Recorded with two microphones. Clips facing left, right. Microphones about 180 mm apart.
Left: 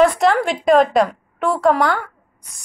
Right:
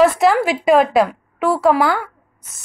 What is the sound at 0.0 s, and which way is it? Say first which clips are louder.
A woman's voice: right 1 dB; 5° right (ahead or behind).